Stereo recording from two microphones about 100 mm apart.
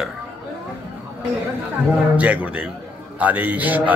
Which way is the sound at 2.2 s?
15° right (ahead or behind).